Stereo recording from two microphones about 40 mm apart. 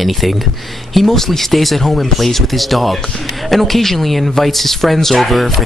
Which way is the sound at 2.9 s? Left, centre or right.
Centre.